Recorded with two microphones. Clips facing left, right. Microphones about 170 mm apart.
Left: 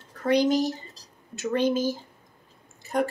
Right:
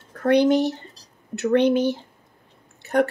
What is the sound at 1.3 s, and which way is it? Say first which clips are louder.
Speech: right 6 dB; 65° right (ahead or behind).